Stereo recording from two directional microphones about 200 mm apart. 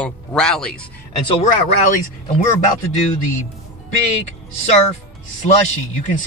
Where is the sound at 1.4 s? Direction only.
40° left (ahead or behind).